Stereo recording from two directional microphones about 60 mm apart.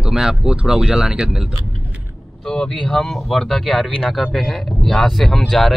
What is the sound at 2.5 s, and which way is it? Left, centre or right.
Speech, centre.